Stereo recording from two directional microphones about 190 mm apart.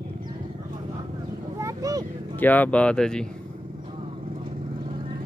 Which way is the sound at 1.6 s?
15° right (ahead or behind).